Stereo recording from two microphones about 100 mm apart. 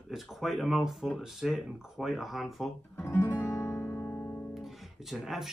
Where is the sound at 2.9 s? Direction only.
25° left (ahead or behind).